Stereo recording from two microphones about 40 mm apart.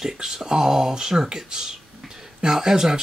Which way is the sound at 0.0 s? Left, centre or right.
Centre.